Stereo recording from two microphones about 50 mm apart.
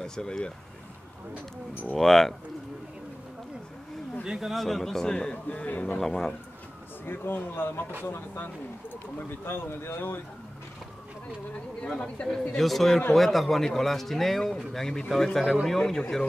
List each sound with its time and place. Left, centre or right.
0.0 s speech: centre
1.9 s speech: centre
4.2 s speech: centre
4.6 s speech: centre
5.1 s a man's voice: centre
5.9 s speech: centre
7.1 s speech: left
11.8 s speech: centre